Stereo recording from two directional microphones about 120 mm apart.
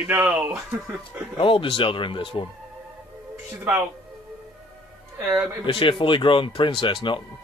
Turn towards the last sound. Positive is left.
turn(degrees=45)  # may be behind; listen again after turning